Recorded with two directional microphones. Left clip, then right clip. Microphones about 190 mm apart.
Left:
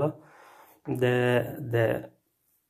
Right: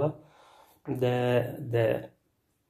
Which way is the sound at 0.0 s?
25° left (ahead or behind).